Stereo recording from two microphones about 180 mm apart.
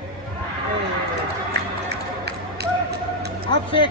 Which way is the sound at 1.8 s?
65° right (ahead or behind).